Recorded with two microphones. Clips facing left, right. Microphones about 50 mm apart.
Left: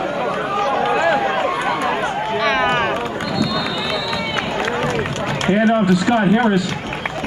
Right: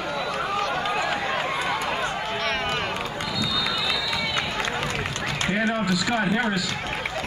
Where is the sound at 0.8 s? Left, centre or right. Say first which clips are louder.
Left 9 dB; left.